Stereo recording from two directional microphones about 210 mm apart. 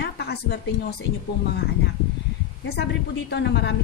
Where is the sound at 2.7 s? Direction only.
50° left (ahead or behind).